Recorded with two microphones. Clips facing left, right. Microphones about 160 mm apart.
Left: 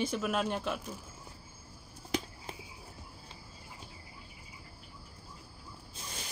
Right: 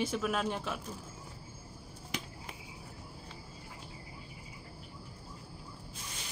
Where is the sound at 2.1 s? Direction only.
35° left (ahead or behind).